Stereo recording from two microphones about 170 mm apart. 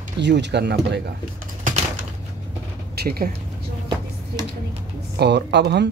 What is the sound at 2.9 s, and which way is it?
Speech, 65° right (ahead or behind).